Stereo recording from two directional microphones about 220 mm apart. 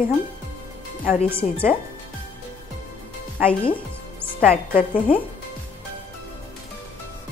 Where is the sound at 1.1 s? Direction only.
30° left (ahead or behind).